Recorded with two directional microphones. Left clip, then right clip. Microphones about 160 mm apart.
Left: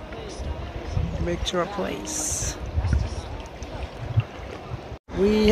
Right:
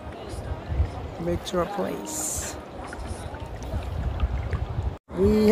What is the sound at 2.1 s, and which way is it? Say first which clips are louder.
Pour: left 3 dB; 55° right (ahead or behind).